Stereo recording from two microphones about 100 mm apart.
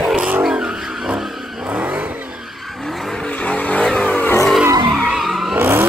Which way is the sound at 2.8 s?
Centre (ahead or behind).